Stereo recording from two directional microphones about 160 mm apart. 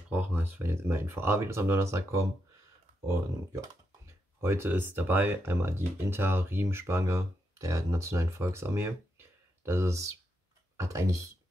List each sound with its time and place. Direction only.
0.1 s speech: 10° right (ahead or behind)